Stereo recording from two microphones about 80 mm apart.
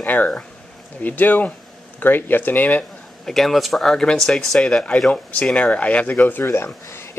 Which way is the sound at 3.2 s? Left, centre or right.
Centre.